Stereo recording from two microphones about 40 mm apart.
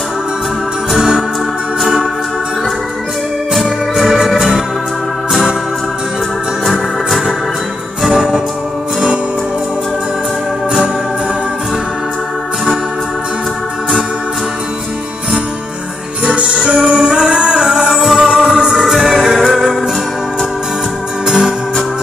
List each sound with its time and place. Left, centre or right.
0.9 s organ: centre
4.0 s music: centre
6.6 s organ: centre
8.1 s music: centre
16.3 s music: right
17.1 s music: right
18.8 s music: centre
21.3 s organ: centre